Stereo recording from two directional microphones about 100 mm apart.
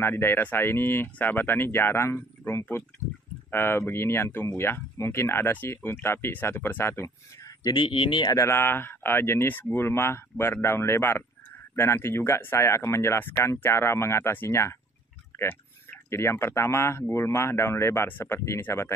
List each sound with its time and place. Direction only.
0.0 s speech: 20° left (ahead or behind)
7.6 s speech: 50° left (ahead or behind)
8.3 s speech: 30° left (ahead or behind)